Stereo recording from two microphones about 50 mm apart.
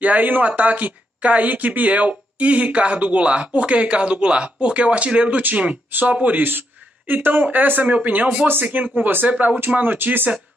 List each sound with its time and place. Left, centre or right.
0.0 s speech: right
7.1 s speech: right
9.3 s speech: right
9.8 s speech: right